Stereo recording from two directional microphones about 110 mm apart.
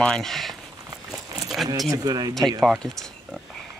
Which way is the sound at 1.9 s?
35° right (ahead or behind).